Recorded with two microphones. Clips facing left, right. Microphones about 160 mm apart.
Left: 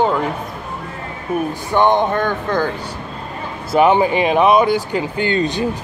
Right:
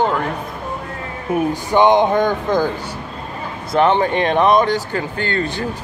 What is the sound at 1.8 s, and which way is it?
Speech, 15° right (ahead or behind).